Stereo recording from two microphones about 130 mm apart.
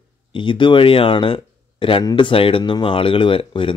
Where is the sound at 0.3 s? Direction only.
40° left (ahead or behind).